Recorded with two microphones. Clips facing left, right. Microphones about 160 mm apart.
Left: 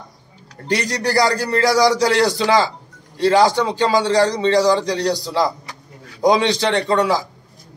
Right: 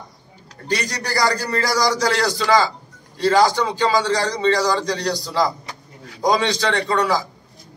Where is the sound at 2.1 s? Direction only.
20° left (ahead or behind).